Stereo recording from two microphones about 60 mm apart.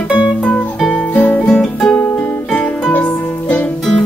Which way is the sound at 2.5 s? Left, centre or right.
Left.